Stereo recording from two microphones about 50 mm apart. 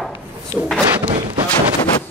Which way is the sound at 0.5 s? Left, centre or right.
Right.